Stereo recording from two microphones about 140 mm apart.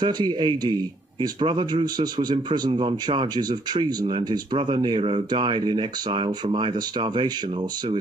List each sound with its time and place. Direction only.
0.0 s a man's voice: 30° right (ahead or behind)